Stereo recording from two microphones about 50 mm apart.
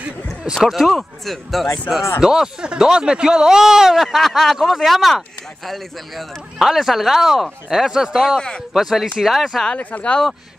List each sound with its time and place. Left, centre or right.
0.7 s speech: centre
2.2 s speech: centre
8.4 s speech: centre
8.7 s speech: centre
9.8 s speech: left